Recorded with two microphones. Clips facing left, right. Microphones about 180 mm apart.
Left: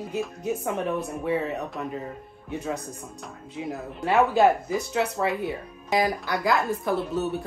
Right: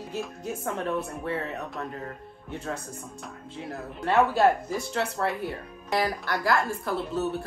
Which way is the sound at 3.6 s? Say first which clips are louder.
Left 2 dB; 10° left (ahead or behind).